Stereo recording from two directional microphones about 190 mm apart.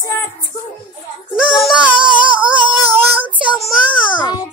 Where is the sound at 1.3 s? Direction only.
5° right (ahead or behind).